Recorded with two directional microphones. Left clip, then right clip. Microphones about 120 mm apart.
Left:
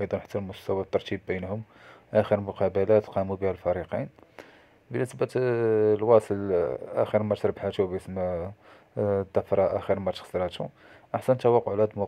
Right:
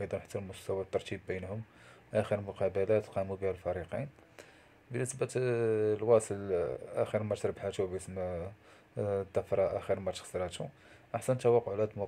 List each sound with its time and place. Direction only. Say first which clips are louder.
0.0 s speech: left 8 dB; 40° left (ahead or behind)